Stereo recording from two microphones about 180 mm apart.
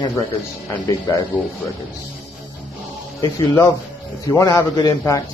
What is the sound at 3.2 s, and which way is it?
A man's voice, 15° left (ahead or behind).